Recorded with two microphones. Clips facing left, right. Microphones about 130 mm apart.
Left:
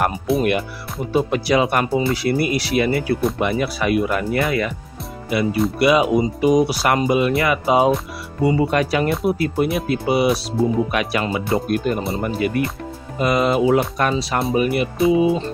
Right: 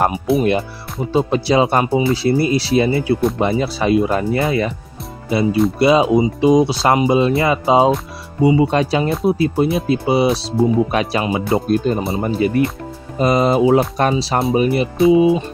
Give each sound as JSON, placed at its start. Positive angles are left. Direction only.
{"t": 0.4, "sound": "speech", "side_deg": -25}
{"t": 8.4, "sound": "speech", "side_deg": -15}
{"t": 8.6, "sound": "speech", "side_deg": -25}